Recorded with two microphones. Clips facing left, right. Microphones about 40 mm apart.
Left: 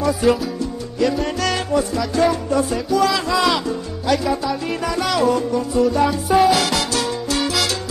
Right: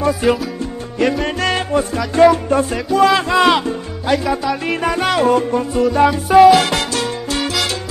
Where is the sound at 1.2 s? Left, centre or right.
Right.